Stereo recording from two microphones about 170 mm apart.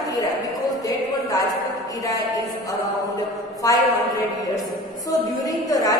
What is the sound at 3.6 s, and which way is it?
Speech, 20° left (ahead or behind).